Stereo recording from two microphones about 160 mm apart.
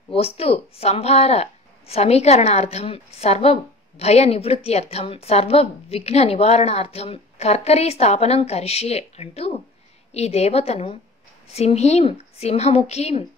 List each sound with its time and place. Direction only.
0.1 s speech: 40° left (ahead or behind)